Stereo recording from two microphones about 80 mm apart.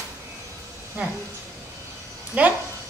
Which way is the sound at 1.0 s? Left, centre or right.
Right.